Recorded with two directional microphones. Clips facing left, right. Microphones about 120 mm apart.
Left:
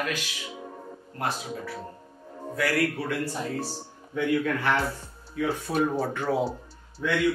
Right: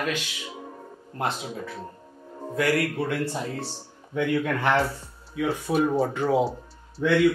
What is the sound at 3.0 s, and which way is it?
A man's voice, 25° right (ahead or behind).